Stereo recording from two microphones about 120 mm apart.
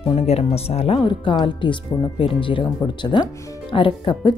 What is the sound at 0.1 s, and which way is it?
Speech, 60° left (ahead or behind).